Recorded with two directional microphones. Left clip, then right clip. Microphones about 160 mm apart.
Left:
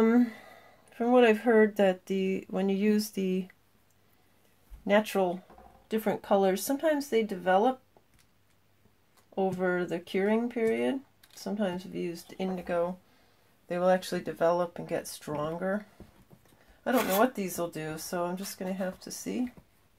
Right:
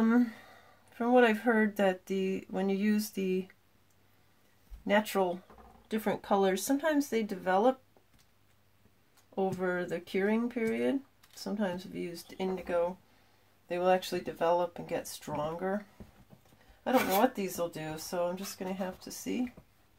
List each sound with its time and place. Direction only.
0.0 s speech: 20° left (ahead or behind)
4.8 s speech: 20° left (ahead or behind)
9.6 s speech: 15° left (ahead or behind)
12.6 s speech: 35° left (ahead or behind)
16.8 s speech: 25° left (ahead or behind)